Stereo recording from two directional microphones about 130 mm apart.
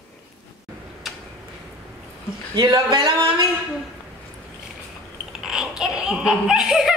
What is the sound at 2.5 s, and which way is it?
Speech, 30° right (ahead or behind).